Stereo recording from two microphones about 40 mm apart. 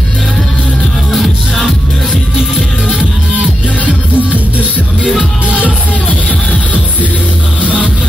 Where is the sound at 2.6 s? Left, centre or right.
Left.